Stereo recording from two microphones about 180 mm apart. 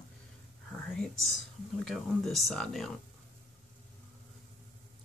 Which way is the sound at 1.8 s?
Centre (ahead or behind).